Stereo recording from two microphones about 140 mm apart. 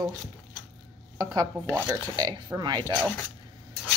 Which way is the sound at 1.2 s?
30° right (ahead or behind).